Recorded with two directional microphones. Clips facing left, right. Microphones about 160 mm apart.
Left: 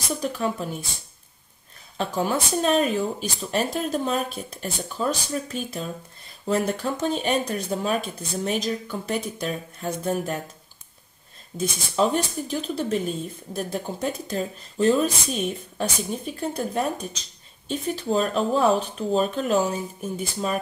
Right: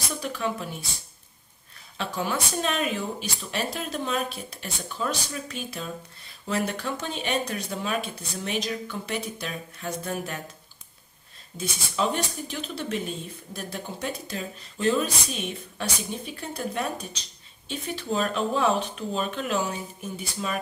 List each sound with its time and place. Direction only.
0.1 s a woman's voice: 45° left (ahead or behind)
2.0 s a woman's voice: 40° left (ahead or behind)
11.5 s speech: 45° left (ahead or behind)